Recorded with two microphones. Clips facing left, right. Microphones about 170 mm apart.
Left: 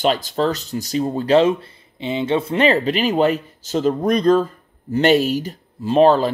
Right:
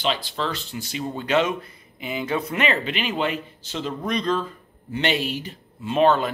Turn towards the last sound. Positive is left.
turn(degrees=35)  # may be behind; listen again after turning